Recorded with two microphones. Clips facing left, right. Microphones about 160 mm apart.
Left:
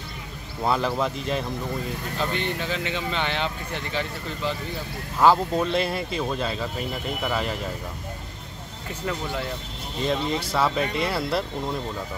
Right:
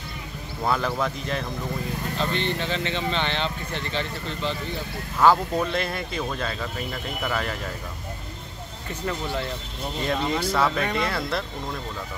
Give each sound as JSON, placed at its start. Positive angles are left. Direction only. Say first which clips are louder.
{"t": 0.7, "sound": "speech", "louder": "left 1 dB", "side_deg": 5}
{"t": 10.0, "sound": "speech", "louder": "even", "side_deg": 5}